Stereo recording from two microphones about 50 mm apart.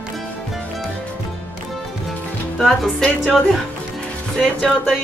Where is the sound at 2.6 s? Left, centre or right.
Centre.